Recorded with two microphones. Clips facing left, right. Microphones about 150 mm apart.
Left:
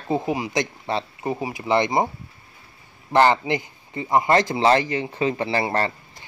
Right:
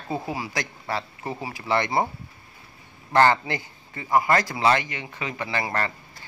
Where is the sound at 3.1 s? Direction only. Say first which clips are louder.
Left 2 dB; 20° left (ahead or behind).